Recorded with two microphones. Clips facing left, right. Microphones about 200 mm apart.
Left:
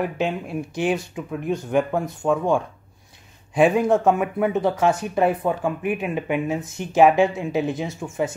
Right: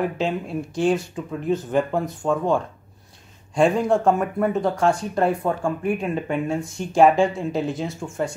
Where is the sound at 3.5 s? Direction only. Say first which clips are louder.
Left 1 dB; 5° left (ahead or behind).